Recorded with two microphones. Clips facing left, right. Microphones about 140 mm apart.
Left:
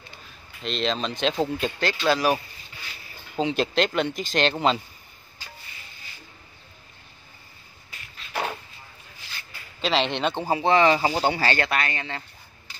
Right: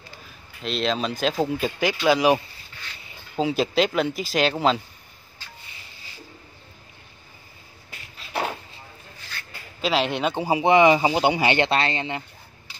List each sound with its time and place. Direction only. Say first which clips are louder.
0.6 s speech: right 2 dB; 5° right (ahead or behind)
3.3 s speech: right 2 dB; 5° right (ahead or behind)
9.8 s speech: right 1 dB; 5° right (ahead or behind); by 12.2 s 20° right (ahead or behind)